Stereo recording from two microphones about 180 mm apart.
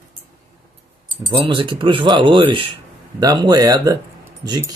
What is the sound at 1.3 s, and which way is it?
Speech, 30° right (ahead or behind).